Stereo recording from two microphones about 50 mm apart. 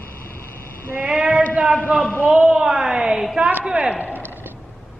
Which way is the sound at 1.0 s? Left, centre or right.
Right.